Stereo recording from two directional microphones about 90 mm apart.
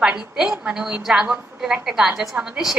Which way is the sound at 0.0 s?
10° right (ahead or behind).